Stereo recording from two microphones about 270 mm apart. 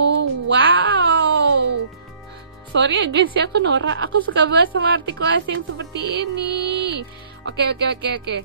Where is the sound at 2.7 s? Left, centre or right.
Right.